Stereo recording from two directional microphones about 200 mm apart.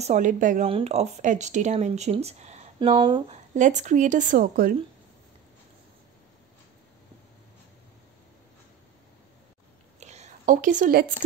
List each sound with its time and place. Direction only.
0.0 s speech: 35° right (ahead or behind)
3.5 s speech: 35° right (ahead or behind)
9.9 s a sound: 35° right (ahead or behind)